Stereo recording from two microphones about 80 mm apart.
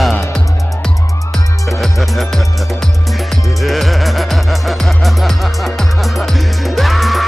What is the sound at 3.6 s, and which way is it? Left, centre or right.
Music, centre.